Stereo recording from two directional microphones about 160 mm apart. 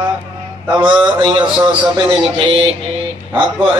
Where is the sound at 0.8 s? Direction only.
30° right (ahead or behind).